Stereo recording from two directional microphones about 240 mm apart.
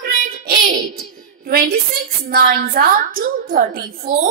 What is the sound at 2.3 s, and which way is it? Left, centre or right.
A woman's voice, right.